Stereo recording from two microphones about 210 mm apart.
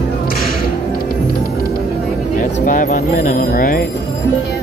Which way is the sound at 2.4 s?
40° left (ahead or behind).